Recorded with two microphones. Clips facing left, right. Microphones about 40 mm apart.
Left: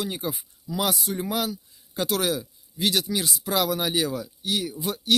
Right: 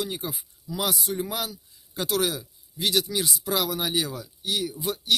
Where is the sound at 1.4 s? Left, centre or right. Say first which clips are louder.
Left 4 dB; left.